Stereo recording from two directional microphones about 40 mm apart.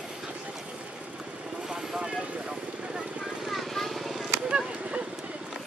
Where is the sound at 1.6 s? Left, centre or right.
Right.